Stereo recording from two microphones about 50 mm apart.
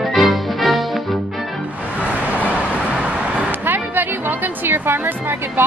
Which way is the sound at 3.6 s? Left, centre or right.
Right.